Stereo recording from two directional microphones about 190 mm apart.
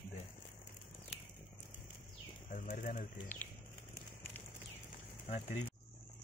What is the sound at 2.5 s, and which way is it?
Speech, 45° left (ahead or behind).